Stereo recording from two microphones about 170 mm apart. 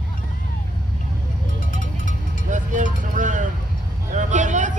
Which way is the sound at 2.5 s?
50° right (ahead or behind).